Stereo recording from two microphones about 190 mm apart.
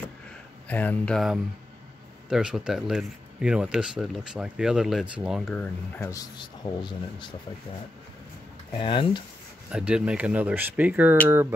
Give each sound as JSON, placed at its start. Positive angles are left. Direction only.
{"t": 0.7, "sound": "speech", "side_deg": 10}
{"t": 8.7, "sound": "speech", "side_deg": 25}
{"t": 9.7, "sound": "speech", "side_deg": -5}